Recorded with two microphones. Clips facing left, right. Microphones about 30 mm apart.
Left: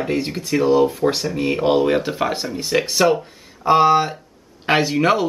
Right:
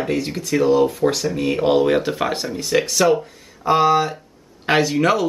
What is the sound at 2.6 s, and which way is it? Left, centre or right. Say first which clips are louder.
Speech: even; centre.